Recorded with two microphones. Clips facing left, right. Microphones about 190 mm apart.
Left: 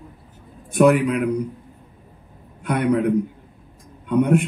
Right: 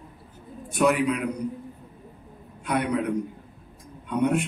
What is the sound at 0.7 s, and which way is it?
Speech, 55° left (ahead or behind).